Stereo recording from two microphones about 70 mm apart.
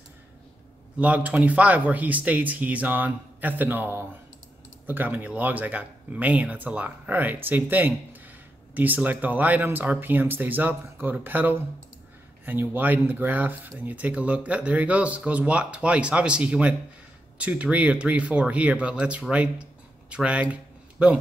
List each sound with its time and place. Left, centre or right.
0.9 s speech: right